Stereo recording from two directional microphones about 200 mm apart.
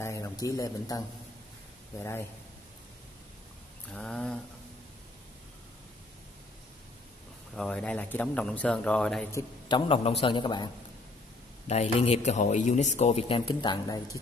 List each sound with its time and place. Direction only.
0.0 s a man's voice: 15° left (ahead or behind)
3.9 s a man's voice: 5° left (ahead or behind)
7.5 s a man's voice: 5° left (ahead or behind)
9.7 s a man's voice: 25° left (ahead or behind)
11.6 s a man's voice: 35° left (ahead or behind)